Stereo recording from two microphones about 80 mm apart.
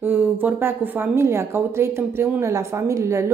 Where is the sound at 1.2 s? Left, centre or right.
Right.